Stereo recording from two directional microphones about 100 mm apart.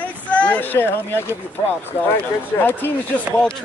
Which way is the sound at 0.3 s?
15° left (ahead or behind).